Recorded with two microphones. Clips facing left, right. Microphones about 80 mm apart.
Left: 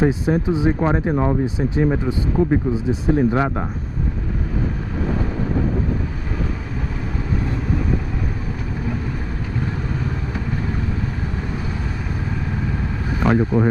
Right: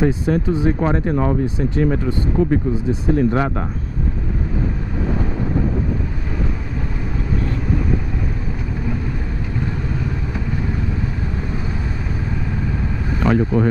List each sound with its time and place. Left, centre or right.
0.0 s speech: centre
3.3 s speech: centre
13.2 s speech: centre